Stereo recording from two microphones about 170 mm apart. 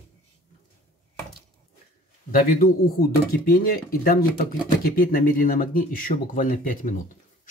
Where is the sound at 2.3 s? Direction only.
60° left (ahead or behind).